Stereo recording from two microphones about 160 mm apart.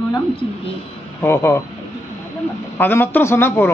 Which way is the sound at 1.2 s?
15° left (ahead or behind).